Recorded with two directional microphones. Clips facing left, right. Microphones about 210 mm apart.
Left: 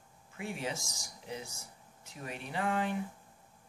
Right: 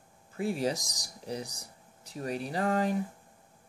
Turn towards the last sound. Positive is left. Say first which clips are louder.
# right 5 dB
turn(degrees=-40)  # may be behind; listen again after turning